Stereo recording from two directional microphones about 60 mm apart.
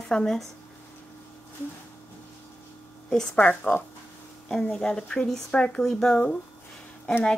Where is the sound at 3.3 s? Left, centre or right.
Left.